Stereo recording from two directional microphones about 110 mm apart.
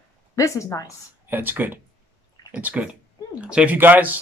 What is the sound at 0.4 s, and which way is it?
Speech, 30° left (ahead or behind).